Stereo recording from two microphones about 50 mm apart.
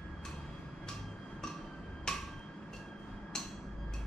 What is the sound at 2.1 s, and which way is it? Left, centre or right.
Hammer, centre.